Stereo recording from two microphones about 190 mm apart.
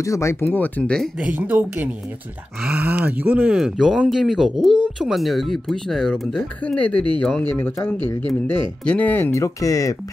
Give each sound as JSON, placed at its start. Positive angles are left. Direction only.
{"t": 0.0, "sound": "speech", "side_deg": 15}
{"t": 1.3, "sound": "speech", "side_deg": -10}